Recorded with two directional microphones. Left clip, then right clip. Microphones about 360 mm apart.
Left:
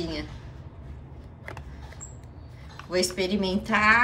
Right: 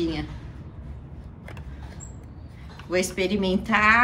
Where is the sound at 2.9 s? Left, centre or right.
Centre.